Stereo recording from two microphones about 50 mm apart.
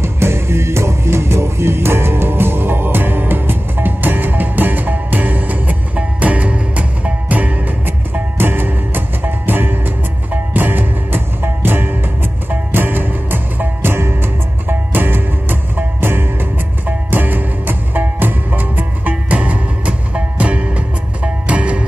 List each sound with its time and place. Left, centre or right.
0.0 s music: right